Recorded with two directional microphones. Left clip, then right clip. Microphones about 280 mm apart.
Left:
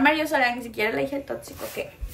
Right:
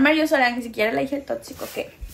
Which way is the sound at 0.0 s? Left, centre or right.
Centre.